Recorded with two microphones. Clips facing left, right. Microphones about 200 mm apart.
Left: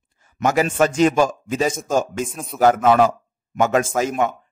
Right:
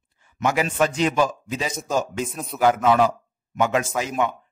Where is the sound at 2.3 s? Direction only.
Centre (ahead or behind).